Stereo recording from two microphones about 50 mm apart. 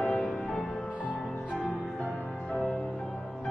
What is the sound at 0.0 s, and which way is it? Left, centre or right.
Music, centre.